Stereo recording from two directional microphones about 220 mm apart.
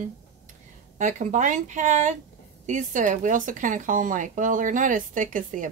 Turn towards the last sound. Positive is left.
turn(degrees=-35)  # may be behind; listen again after turning